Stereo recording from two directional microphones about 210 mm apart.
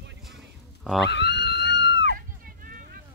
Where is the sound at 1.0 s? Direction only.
55° left (ahead or behind).